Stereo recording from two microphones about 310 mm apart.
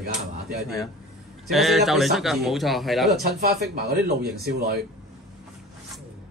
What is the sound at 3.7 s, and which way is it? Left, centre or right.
A man's voice, right.